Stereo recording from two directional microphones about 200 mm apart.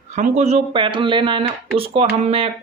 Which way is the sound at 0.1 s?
35° right (ahead or behind).